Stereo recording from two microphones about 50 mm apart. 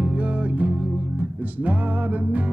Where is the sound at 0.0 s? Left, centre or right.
Right.